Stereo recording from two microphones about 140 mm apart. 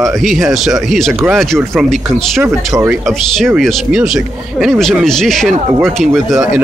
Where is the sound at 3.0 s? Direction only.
5° left (ahead or behind).